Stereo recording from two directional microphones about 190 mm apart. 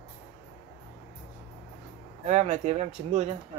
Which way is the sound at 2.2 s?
35° right (ahead or behind).